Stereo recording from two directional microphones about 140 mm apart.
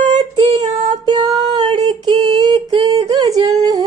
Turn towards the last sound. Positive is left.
turn(degrees=-25)  # may be behind; listen again after turning